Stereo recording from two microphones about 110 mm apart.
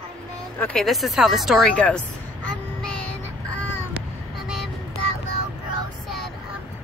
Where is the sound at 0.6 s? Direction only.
10° left (ahead or behind).